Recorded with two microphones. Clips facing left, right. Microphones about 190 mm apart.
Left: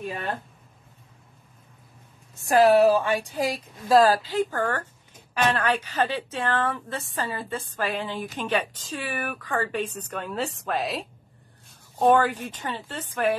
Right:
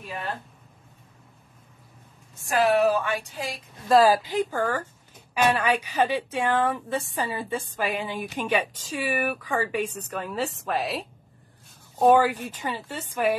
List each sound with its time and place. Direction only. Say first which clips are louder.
2.4 s a woman's voice: left 4 dB; 40° left (ahead or behind)
3.9 s a woman's voice: even; 10° right (ahead or behind)
4.5 s a woman's voice: right 1 dB; 5° right (ahead or behind)